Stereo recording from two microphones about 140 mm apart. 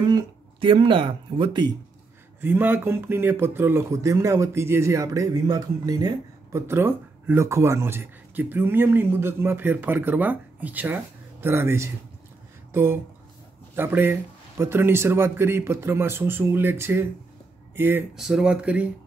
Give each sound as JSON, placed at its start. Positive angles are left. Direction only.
{"t": 0.0, "sound": "speech", "side_deg": -35}
{"t": 2.4, "sound": "speech", "side_deg": -15}
{"t": 13.7, "sound": "speech", "side_deg": -15}
{"t": 18.1, "sound": "speech", "side_deg": -5}